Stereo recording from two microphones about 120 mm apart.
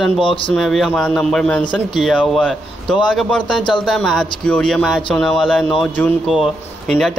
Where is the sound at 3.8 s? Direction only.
Centre (ahead or behind).